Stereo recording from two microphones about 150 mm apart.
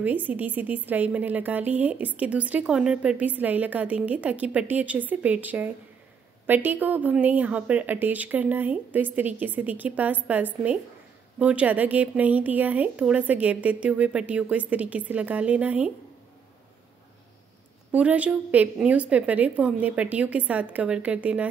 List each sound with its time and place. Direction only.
0.0 s a woman's voice: 10° right (ahead or behind)
17.9 s a woman's voice: 10° right (ahead or behind)